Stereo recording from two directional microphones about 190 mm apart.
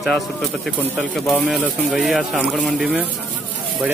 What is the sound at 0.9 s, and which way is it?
Speech, centre (ahead or behind).